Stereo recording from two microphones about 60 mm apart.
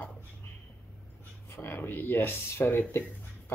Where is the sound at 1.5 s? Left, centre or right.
Left.